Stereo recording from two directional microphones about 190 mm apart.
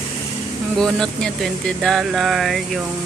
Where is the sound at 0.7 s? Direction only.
Centre (ahead or behind).